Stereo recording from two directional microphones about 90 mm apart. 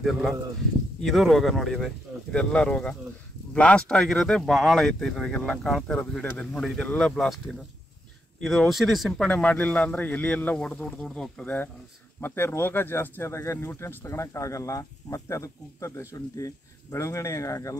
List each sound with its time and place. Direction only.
0.0 s speech: centre (ahead or behind)
2.3 s speech: 10° left (ahead or behind)
8.4 s speech: centre (ahead or behind)
9.3 s speech: 15° left (ahead or behind)
11.4 s speech: 20° left (ahead or behind); by 17.7 s 35° left (ahead or behind)